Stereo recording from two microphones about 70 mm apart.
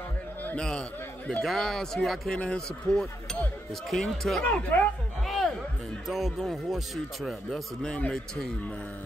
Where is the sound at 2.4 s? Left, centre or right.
Centre.